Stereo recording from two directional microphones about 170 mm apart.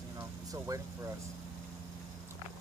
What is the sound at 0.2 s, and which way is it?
Vehicle, 20° right (ahead or behind).